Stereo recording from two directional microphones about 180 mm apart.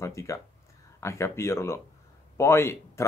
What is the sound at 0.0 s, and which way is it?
Speech, 15° left (ahead or behind).